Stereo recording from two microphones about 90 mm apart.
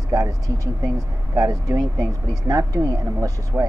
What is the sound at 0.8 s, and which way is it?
Speech, 40° right (ahead or behind).